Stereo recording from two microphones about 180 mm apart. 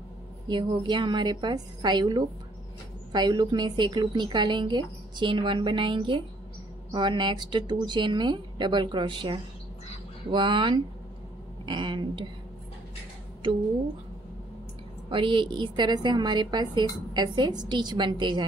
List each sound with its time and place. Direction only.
0.5 s a woman's voice: 25° right (ahead or behind)
15.0 s a woman's voice: 25° right (ahead or behind)